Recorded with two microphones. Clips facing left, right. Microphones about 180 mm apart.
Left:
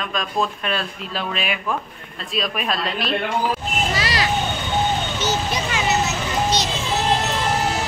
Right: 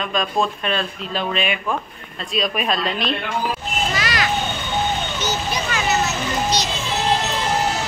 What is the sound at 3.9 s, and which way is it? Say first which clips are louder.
Children playing: even; 30° left (ahead or behind).